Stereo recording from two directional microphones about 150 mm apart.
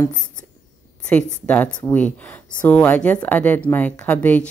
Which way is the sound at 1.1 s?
10° left (ahead or behind).